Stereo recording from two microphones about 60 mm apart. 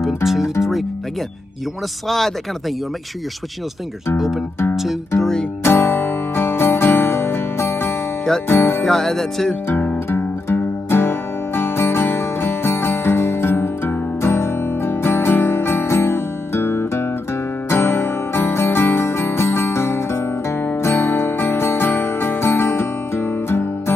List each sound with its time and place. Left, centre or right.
0.0 s speech: centre
2.0 s speech: centre
5.6 s music: left
8.8 s speech: centre
10.1 s music: left